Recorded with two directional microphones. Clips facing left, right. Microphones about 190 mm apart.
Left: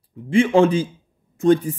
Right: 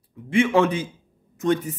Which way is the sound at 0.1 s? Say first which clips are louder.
Left 3 dB; 30° left (ahead or behind).